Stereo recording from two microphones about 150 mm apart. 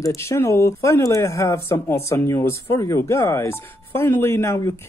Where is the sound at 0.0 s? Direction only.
20° left (ahead or behind).